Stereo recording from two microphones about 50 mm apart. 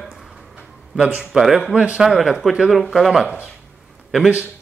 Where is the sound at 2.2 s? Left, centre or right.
Centre.